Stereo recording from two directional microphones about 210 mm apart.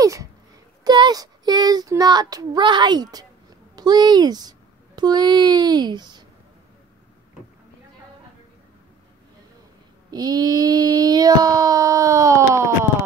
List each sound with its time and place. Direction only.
0.0 s a sound: 15° right (ahead or behind)
0.8 s a child's voice: 20° right (ahead or behind)
10.1 s child singing: 15° right (ahead or behind)